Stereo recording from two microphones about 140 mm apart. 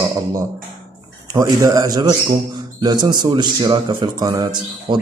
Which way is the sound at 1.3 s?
25° right (ahead or behind).